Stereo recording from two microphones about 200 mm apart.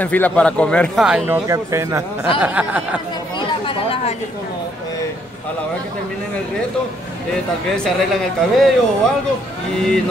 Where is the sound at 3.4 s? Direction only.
25° left (ahead or behind).